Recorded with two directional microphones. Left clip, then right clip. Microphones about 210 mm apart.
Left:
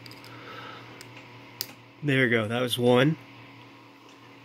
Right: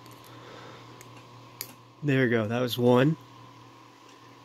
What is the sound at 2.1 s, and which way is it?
Speech, 15° right (ahead or behind).